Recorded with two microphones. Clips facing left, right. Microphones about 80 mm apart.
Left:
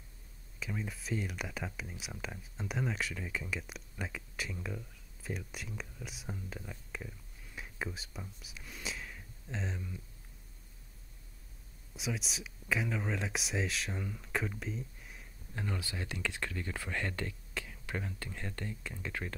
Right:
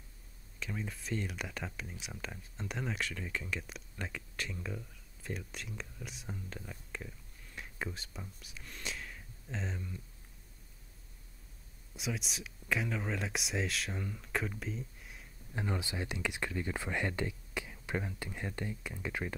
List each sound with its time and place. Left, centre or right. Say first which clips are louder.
0.6 s speech: left 1 dB; centre
11.9 s speech: even; centre
15.5 s speech: right 2 dB; centre